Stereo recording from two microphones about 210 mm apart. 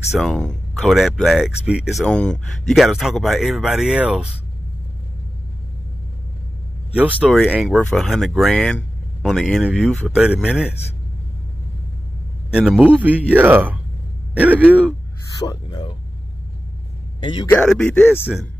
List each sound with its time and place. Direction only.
0.2 s speech: 5° left (ahead or behind)
7.0 s speech: 5° right (ahead or behind)
12.5 s speech: 5° right (ahead or behind)
15.4 s speech: 20° left (ahead or behind)
17.2 s a man's voice: 20° left (ahead or behind)
17.5 s speech: 5° left (ahead or behind)